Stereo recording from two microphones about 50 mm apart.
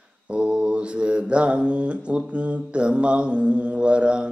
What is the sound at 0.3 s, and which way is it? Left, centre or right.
Mantra, right.